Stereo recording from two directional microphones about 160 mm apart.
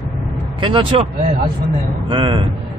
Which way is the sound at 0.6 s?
30° right (ahead or behind).